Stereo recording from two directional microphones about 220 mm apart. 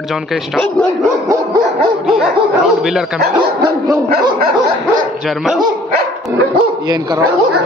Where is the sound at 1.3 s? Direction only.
20° right (ahead or behind).